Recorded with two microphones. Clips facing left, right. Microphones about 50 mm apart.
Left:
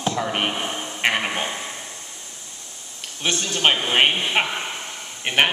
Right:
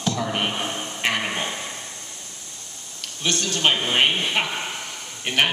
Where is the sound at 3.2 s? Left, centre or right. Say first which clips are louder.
Left 1 dB; centre.